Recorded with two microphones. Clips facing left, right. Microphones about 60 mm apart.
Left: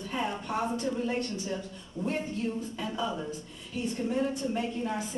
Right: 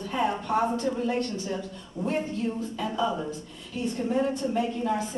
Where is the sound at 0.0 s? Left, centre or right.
Right.